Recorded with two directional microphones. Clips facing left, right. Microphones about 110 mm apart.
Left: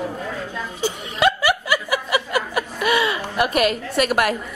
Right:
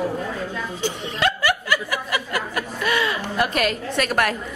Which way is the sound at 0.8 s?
15° left (ahead or behind).